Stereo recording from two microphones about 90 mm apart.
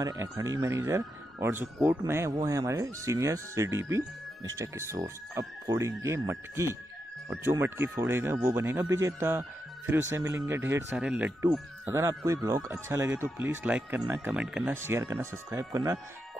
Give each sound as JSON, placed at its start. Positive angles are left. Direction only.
{"t": 0.0, "sound": "speech", "side_deg": -35}
{"t": 1.5, "sound": "speech", "side_deg": -25}
{"t": 10.9, "sound": "speech", "side_deg": -15}
{"t": 11.9, "sound": "speech", "side_deg": -30}
{"t": 14.7, "sound": "speech", "side_deg": -30}